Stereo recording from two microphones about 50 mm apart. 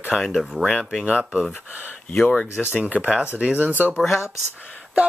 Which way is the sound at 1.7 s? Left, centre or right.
Left.